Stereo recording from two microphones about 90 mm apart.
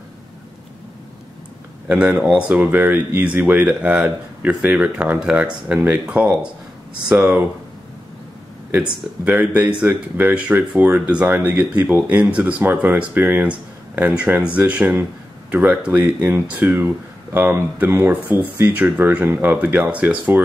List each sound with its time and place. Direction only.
1.9 s speech: 15° right (ahead or behind)
8.7 s speech: 20° right (ahead or behind)